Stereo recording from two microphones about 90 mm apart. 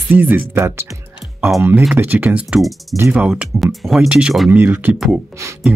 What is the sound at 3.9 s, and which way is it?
Speech, 10° right (ahead or behind).